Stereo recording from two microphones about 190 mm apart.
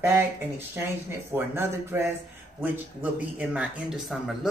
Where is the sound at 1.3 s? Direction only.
10° right (ahead or behind).